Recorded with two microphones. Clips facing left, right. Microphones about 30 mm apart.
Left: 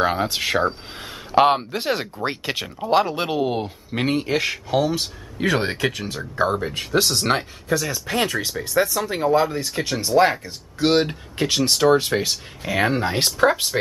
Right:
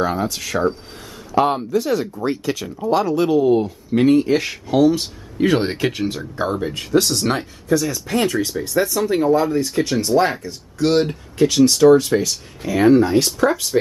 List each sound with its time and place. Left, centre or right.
0.0 s a man's voice: left
2.2 s speech: left; by 6.5 s centre
6.9 s speech: centre
10.4 s speech: left